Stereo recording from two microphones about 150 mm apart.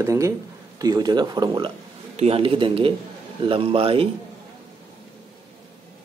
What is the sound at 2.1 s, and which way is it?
Speech, 40° right (ahead or behind).